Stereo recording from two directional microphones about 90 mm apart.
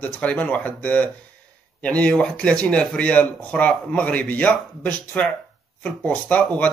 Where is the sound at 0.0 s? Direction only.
15° left (ahead or behind).